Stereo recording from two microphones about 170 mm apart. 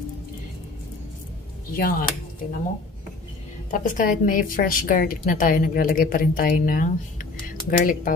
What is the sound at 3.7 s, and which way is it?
A woman's voice, 50° left (ahead or behind).